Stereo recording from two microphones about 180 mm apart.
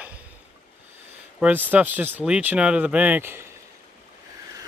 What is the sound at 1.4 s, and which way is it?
Speech, 10° right (ahead or behind).